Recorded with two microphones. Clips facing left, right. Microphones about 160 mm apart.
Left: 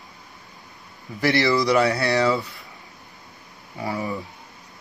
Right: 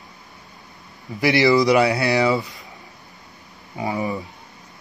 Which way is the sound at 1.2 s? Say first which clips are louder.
Right 4 dB; 15° right (ahead or behind).